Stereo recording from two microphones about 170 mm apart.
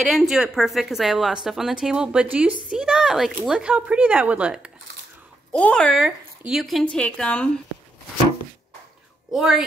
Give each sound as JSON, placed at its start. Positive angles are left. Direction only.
{"t": 0.0, "sound": "a woman's voice", "side_deg": 0}
{"t": 5.5, "sound": "a woman's voice", "side_deg": 5}
{"t": 9.3, "sound": "a woman's voice", "side_deg": 0}